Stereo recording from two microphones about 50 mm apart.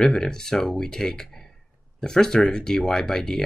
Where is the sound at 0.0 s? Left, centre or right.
Centre.